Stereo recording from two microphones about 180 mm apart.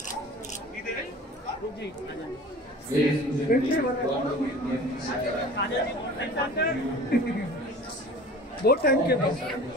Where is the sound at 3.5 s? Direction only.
50° left (ahead or behind).